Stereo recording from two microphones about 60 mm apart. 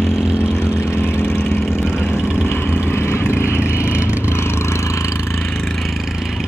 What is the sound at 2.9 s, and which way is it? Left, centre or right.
Vehicle, left.